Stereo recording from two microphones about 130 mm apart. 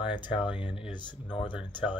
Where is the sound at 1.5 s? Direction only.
10° right (ahead or behind).